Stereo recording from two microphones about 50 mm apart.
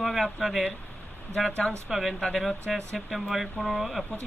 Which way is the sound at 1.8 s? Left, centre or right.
Centre.